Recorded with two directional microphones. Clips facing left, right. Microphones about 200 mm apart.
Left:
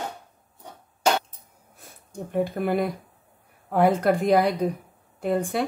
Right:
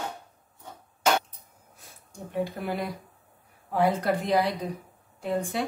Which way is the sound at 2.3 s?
50° left (ahead or behind).